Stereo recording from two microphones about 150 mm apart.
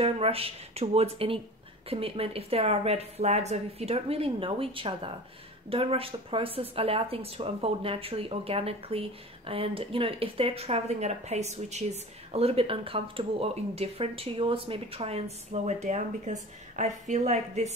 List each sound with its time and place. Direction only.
0.0 s speech: 40° right (ahead or behind)